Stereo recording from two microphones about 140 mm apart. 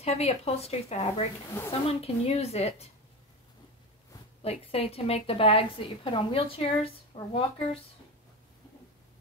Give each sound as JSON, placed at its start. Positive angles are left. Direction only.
{"t": 0.0, "sound": "a woman's voice", "side_deg": 50}
{"t": 4.4, "sound": "a woman's voice", "side_deg": 45}